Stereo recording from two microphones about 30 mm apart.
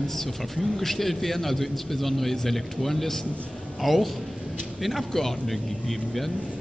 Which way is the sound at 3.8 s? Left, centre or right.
Centre.